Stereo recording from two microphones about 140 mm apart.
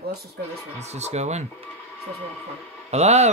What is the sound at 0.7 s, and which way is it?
Sigh, 50° right (ahead or behind).